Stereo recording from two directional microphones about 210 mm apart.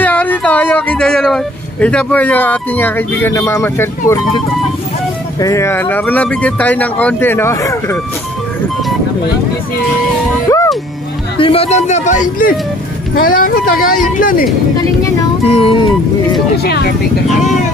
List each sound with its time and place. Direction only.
0.0 s speech: 5° left (ahead or behind)
5.4 s speech: 15° left (ahead or behind)
11.3 s speech: 25° left (ahead or behind); by 14.4 s 40° left (ahead or behind)
15.5 s speech: 25° left (ahead or behind)
16.6 s speech: 50° left (ahead or behind)